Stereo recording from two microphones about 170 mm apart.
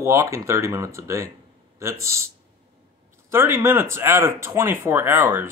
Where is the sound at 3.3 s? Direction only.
15° right (ahead or behind).